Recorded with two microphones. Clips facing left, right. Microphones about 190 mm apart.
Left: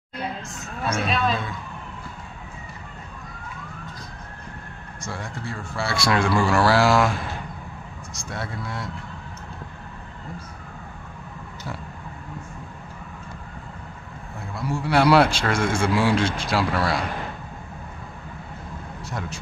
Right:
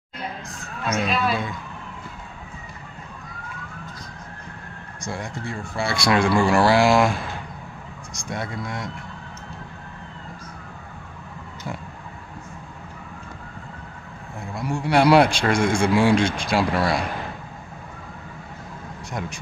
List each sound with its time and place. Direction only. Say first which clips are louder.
1.0 s speech: right 1 dB; 5° right (ahead or behind)
5.8 s speech: right 2 dB; 15° right (ahead or behind)
8.3 s speech: right 3 dB; 15° right (ahead or behind)
14.5 s speech: right 1 dB; 15° right (ahead or behind)
19.2 s speech: right 3 dB; 15° right (ahead or behind)